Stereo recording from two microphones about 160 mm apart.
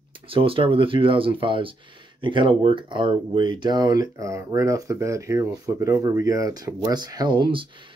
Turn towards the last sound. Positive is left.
turn(degrees=-30)  # may be behind; listen again after turning